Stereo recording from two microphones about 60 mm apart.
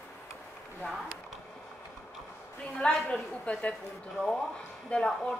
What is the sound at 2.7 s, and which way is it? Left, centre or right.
A woman's voice, centre.